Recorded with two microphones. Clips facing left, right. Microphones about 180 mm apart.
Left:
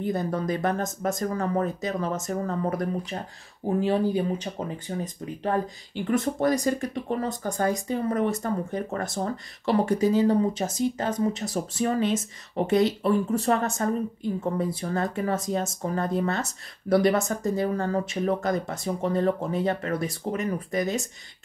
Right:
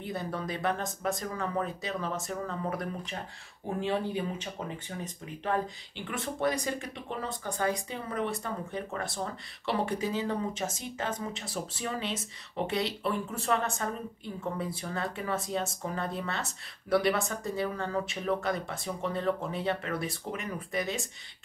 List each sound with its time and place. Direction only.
0.0 s speech: 45° left (ahead or behind)